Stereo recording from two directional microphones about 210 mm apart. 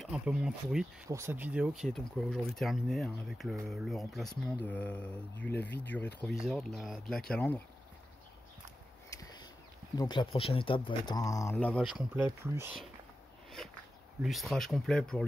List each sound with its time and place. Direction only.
0.0 s speech: 5° right (ahead or behind)
1.0 s speech: 15° right (ahead or behind); by 7.6 s 5° left (ahead or behind)
9.1 s a sound: 20° left (ahead or behind)
9.9 s speech: 20° left (ahead or behind); by 12.7 s 10° right (ahead or behind)
14.2 s speech: centre (ahead or behind)